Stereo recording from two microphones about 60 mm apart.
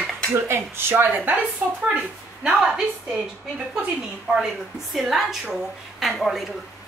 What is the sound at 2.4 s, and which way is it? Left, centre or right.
Speech, centre.